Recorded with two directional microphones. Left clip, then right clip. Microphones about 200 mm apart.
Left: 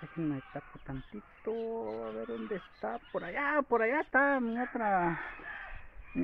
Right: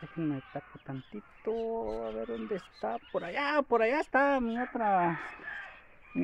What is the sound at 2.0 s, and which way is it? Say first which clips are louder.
Speech: right 2 dB; 45° right (ahead or behind).